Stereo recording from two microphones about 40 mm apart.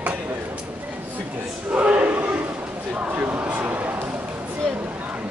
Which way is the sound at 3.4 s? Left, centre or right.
Right.